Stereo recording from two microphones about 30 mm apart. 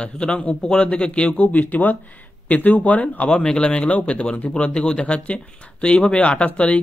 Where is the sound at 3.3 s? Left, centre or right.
Left.